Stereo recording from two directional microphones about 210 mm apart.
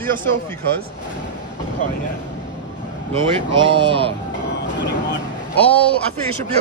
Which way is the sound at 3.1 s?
25° right (ahead or behind).